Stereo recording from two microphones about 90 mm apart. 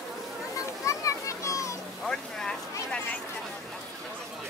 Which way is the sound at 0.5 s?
35° left (ahead or behind).